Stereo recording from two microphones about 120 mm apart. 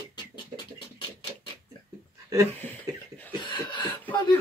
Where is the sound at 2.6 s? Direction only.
15° left (ahead or behind).